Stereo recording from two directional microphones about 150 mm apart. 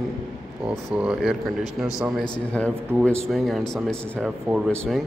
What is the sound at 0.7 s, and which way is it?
A man's voice, 5° right (ahead or behind).